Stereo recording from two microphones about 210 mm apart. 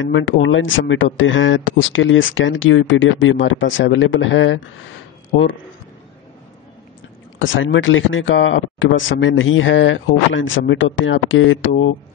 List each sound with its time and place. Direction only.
0.0 s speech: 65° left (ahead or behind)
7.3 s speech: 65° left (ahead or behind)